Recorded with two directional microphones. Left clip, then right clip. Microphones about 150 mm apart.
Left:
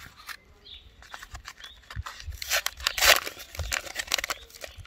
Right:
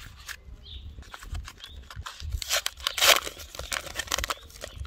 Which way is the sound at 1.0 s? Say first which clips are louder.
Left 3 dB; 5° right (ahead or behind).